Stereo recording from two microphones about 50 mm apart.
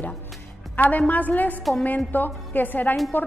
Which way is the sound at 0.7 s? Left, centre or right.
Left.